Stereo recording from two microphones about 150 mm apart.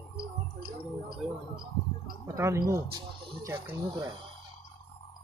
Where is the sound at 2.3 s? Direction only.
20° right (ahead or behind).